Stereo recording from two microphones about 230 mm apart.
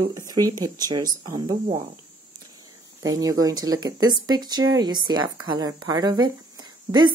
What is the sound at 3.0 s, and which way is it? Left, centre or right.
A woman's voice, centre.